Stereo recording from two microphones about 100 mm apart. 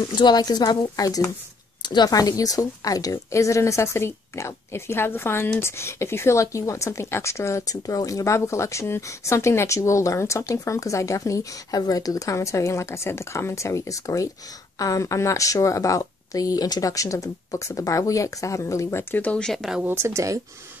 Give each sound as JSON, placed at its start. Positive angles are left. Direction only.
{"t": 0.1, "sound": "speech", "side_deg": 45}
{"t": 1.8, "sound": "speech", "side_deg": 45}
{"t": 19.2, "sound": "speech", "side_deg": 10}
{"t": 19.8, "sound": "speech", "side_deg": -25}